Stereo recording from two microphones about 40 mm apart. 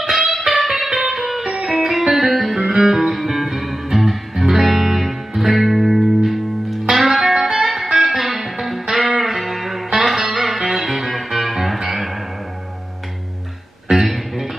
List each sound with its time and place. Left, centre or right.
0.1 s music: centre
13.8 s music: centre